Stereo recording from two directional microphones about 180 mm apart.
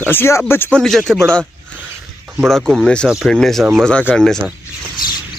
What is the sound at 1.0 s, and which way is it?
Speech, 15° right (ahead or behind).